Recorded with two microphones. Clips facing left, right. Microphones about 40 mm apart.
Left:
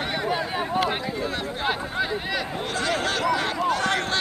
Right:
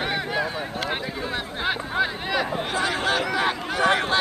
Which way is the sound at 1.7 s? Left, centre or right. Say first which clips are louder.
Right 2 dB; centre.